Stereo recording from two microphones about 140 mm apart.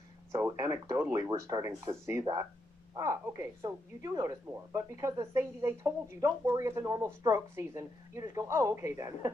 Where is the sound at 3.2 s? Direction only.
20° right (ahead or behind).